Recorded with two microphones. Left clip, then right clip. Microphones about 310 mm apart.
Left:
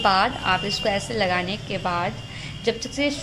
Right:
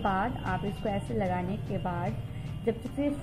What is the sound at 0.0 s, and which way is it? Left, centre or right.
A woman's voice, centre.